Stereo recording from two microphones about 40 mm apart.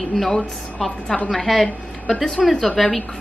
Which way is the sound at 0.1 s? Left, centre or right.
Centre.